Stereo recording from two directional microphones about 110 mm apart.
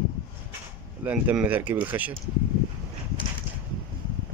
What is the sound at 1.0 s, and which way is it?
Speech, 15° right (ahead or behind).